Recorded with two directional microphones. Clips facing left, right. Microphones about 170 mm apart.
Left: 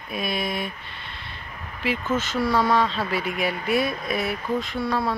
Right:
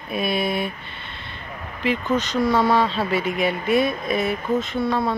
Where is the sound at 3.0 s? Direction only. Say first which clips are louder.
Right 4 dB; centre (ahead or behind).